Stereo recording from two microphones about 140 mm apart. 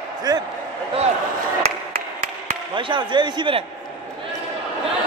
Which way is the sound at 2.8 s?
35° right (ahead or behind).